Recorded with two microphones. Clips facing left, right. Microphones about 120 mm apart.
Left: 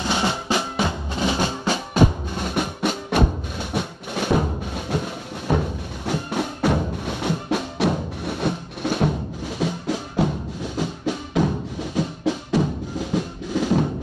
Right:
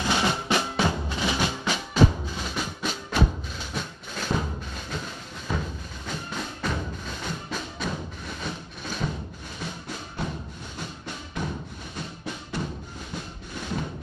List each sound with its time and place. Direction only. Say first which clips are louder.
0.0 s drum: left 2 dB; 25° left (ahead or behind)
1.1 s music: left 4 dB; 30° left (ahead or behind)
2.3 s music: left 7 dB; 60° left (ahead or behind)
9.6 s music: left 11 dB; 90° left